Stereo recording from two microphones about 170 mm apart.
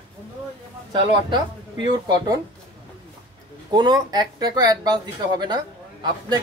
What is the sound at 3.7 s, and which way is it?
A man's voice, 25° right (ahead or behind).